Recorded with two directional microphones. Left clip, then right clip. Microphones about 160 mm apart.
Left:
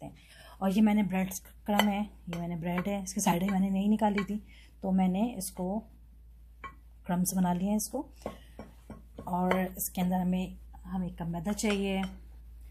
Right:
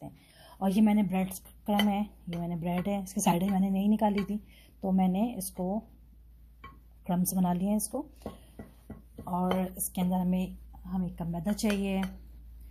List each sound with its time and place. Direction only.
0.0 s speech: 5° right (ahead or behind)
7.1 s speech: 15° right (ahead or behind)